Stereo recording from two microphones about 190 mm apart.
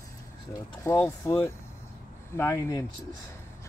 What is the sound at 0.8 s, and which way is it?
Speech, 15° left (ahead or behind).